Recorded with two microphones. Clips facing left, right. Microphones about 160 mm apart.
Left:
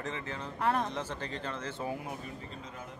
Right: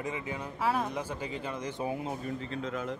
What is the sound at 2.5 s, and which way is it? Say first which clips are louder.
Speech: right 10 dB; 90° right.